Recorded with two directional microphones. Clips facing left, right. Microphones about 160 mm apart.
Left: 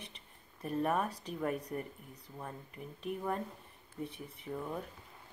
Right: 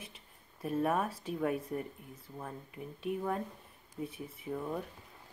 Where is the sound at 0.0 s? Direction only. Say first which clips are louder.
Right 1 dB; 5° right (ahead or behind).